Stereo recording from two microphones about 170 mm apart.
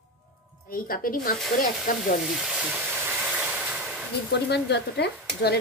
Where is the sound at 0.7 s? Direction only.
55° left (ahead or behind).